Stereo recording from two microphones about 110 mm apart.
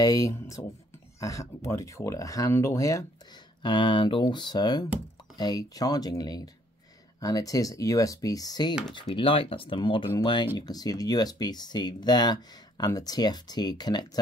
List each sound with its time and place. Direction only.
0.0 s speech: 35° left (ahead or behind)
3.6 s speech: 50° left (ahead or behind)
9.1 s speech: 55° left (ahead or behind)
10.6 s speech: 35° left (ahead or behind)